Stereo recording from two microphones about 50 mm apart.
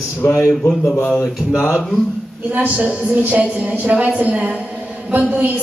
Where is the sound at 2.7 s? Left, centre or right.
Right.